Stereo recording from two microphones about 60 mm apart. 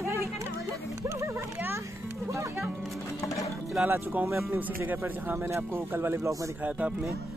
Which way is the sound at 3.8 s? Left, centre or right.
Right.